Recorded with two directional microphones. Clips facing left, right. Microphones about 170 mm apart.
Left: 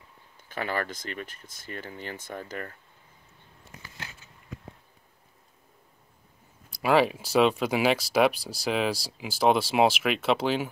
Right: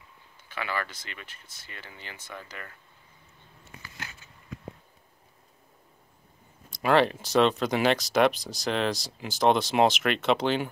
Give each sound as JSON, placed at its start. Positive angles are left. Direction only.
{"t": 0.5, "sound": "speech", "side_deg": 40}
{"t": 6.7, "sound": "speech", "side_deg": 5}